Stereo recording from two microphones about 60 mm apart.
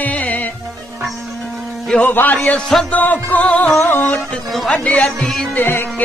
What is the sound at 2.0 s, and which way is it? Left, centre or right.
Music, left.